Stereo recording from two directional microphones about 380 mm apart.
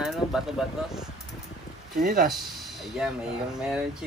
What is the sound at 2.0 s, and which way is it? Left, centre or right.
Speech, right.